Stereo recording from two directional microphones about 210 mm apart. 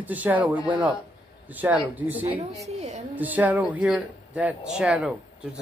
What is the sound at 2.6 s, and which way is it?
Speech, 30° right (ahead or behind).